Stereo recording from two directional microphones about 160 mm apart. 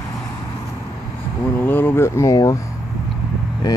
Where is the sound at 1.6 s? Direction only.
15° left (ahead or behind).